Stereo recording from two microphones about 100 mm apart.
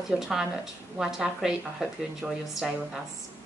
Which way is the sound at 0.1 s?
5° right (ahead or behind).